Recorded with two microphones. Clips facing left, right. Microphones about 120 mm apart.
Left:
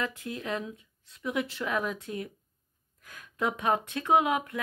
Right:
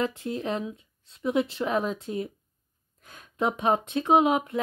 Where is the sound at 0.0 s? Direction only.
25° right (ahead or behind).